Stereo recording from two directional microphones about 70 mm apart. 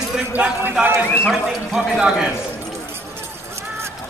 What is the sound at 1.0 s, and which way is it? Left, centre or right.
Speech, left.